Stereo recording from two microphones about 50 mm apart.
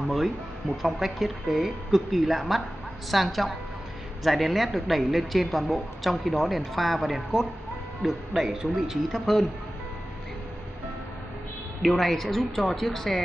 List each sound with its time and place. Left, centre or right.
0.0 s music: centre
0.8 s speech: centre
9.2 s speech: centre
11.8 s speech: centre